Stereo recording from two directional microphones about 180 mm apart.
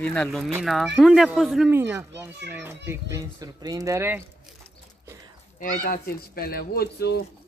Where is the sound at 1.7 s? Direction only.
15° right (ahead or behind).